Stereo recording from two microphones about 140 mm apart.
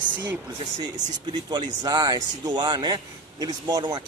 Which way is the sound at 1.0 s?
30° right (ahead or behind).